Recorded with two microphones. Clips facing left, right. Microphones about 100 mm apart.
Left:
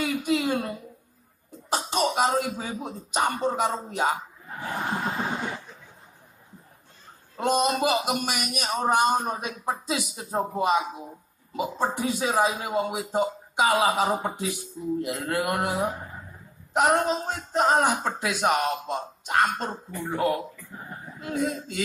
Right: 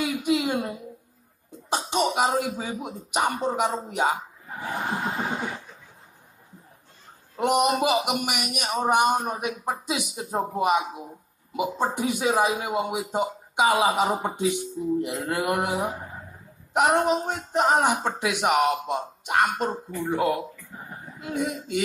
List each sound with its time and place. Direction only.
0.0 s a sound: 15° right (ahead or behind)
1.7 s speech: 20° right (ahead or behind)
7.3 s speech: 15° right (ahead or behind)